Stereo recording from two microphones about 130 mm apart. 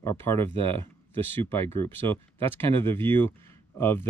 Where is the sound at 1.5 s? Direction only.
20° left (ahead or behind).